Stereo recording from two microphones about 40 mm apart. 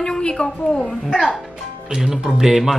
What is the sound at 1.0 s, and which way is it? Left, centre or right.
Speech, centre.